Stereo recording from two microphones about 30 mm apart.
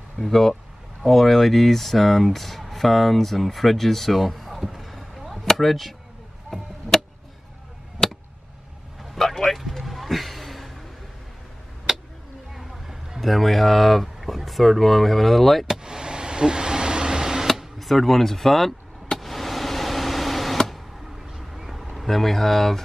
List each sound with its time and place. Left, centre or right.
0.2 s speech: centre
5.3 s chop: centre
6.9 s music: centre
9.2 s vehicle: centre
9.7 s a sound: centre
11.9 s tick-tock: centre
13.2 s speech: centre
15.6 s vehicle: right
17.7 s speech: centre
19.1 s power windows: centre
21.4 s vehicle: centre
21.9 s speech: centre